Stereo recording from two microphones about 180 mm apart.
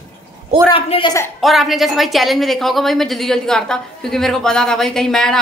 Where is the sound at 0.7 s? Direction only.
30° left (ahead or behind).